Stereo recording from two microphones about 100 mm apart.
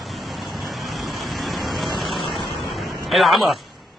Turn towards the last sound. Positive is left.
turn(degrees=0)  # may be behind; listen again after turning